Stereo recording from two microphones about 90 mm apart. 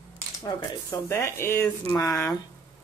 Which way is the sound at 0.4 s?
45° left (ahead or behind).